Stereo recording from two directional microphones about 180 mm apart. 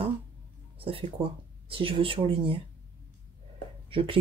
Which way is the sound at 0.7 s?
30° right (ahead or behind).